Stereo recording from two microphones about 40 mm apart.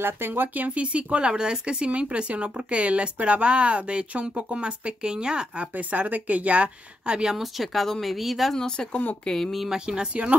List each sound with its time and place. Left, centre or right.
0.3 s a woman's voice: right
1.3 s a woman's voice: right
5.6 s a woman's voice: right
7.3 s speech: centre
8.5 s speech: left
9.5 s speech: centre
9.8 s a woman's voice: right